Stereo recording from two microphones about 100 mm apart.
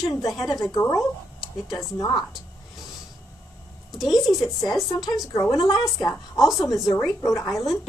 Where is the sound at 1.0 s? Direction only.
Centre (ahead or behind).